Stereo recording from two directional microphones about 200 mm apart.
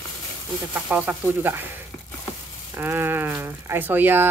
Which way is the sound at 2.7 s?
10° right (ahead or behind).